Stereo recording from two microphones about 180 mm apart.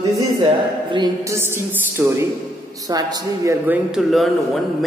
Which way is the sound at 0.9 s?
20° right (ahead or behind).